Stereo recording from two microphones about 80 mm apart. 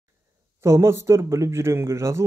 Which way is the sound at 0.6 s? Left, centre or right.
Right.